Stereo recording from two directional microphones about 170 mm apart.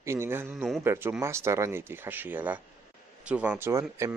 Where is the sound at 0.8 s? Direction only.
15° right (ahead or behind).